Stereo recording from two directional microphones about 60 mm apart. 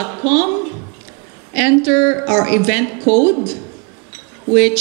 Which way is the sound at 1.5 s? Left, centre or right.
Right.